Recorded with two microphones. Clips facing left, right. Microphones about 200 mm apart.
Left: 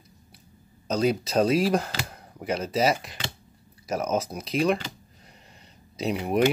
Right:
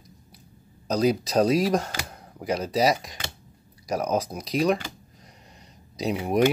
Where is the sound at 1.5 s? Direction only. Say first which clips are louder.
Even; 5° left (ahead or behind).